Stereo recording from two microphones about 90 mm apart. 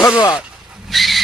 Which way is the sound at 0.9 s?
Centre (ahead or behind).